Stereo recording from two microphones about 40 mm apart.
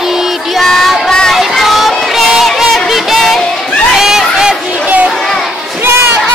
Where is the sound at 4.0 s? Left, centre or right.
Centre.